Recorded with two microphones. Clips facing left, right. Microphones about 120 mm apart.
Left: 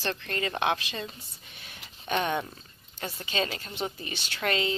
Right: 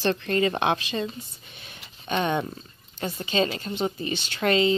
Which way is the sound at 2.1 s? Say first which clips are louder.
Right 3 dB; 20° right (ahead or behind).